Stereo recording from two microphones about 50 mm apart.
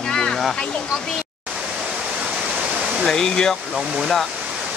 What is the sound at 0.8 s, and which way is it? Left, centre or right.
Speech, centre.